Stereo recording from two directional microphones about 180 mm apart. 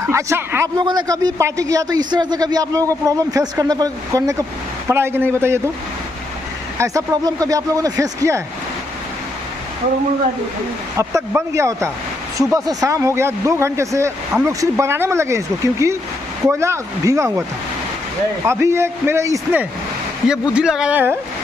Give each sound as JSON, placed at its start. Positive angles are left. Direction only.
{"t": 0.0, "sound": "a man's voice", "side_deg": -15}
{"t": 6.8, "sound": "speech", "side_deg": -15}
{"t": 11.0, "sound": "a man's voice", "side_deg": -15}